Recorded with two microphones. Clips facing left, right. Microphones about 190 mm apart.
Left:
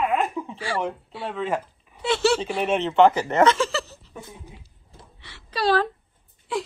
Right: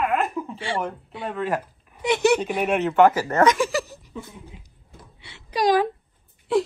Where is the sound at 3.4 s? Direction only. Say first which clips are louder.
Right 1 dB; 15° right (ahead or behind).